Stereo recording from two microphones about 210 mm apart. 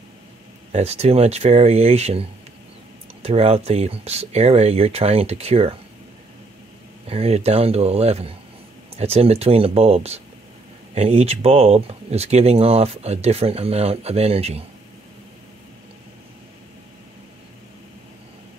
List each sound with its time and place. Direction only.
0.7 s speech: 30° right (ahead or behind)
7.1 s speech: 30° right (ahead or behind)